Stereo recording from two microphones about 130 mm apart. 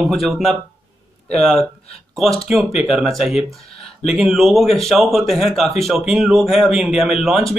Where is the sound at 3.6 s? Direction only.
50° left (ahead or behind).